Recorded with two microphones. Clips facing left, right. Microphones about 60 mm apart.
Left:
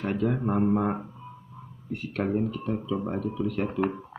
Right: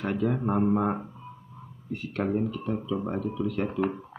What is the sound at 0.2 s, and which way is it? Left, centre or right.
Speech, centre.